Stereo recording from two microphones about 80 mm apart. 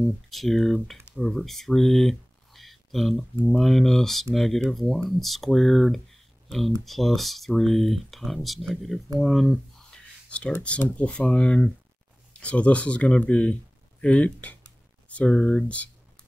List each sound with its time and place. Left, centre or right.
0.0 s speech: centre
10.8 s speech: centre